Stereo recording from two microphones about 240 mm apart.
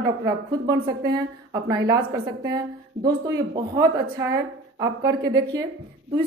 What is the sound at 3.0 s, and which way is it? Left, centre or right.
A woman's voice, centre.